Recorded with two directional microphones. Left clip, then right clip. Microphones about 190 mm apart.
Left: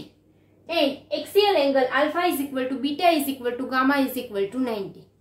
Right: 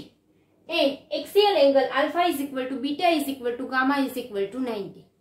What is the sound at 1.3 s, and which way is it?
A woman's voice, 10° left (ahead or behind).